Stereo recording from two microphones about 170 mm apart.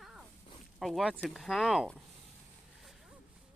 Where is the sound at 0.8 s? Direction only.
Centre (ahead or behind).